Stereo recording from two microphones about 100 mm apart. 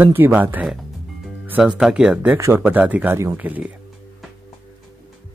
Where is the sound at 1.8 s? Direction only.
10° right (ahead or behind).